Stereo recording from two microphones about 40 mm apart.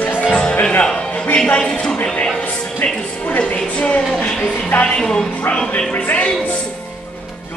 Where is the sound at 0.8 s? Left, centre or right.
Left.